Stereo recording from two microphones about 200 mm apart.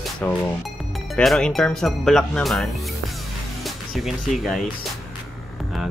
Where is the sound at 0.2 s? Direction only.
10° left (ahead or behind).